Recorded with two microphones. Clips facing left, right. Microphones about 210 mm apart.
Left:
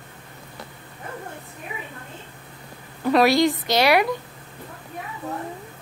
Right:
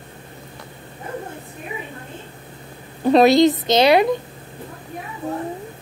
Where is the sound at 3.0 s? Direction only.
25° right (ahead or behind).